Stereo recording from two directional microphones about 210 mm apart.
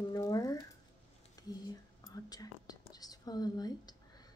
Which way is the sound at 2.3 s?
20° left (ahead or behind).